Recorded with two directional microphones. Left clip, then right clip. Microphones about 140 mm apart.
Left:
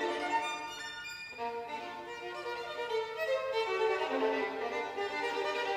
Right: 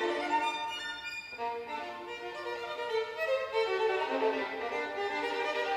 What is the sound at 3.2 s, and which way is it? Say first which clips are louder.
Violin: right 2 dB; 30° left (ahead or behind).